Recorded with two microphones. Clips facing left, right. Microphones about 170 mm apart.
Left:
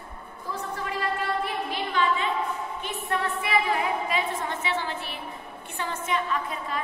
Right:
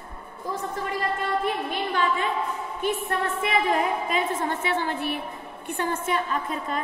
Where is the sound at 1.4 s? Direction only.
50° right (ahead or behind).